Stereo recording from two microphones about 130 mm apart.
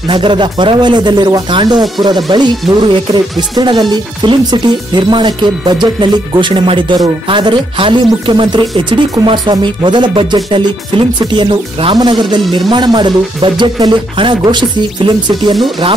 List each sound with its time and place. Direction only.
0.1 s speech: 40° right (ahead or behind)
2.6 s music: centre (ahead or behind)
3.1 s speech: 35° right (ahead or behind)